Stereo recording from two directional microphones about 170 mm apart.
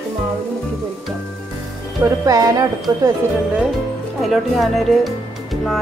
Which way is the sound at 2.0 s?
20° right (ahead or behind).